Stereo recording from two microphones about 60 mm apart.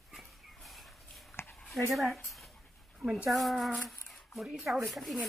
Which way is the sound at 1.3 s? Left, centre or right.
Left.